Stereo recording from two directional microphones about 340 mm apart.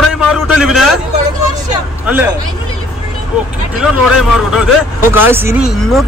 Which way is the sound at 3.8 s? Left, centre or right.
Centre.